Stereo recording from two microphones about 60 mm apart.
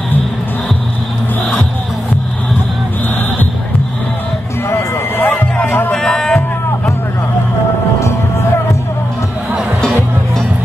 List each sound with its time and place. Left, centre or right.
4.6 s a sound: left
5.2 s music: left
5.9 s music: centre